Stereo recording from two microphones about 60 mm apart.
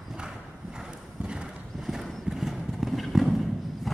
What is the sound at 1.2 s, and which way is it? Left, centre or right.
Clip-clop, centre.